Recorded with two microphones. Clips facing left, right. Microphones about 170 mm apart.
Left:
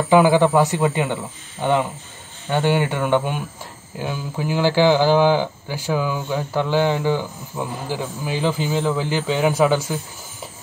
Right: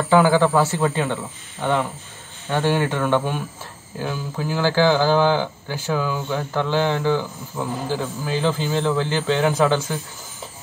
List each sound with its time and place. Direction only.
0.0 s speech: 15° left (ahead or behind)